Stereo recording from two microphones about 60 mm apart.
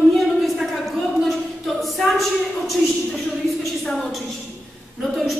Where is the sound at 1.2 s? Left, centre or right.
Centre.